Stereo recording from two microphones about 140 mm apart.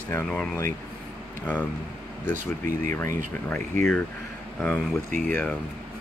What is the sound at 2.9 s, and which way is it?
Speech, 15° left (ahead or behind).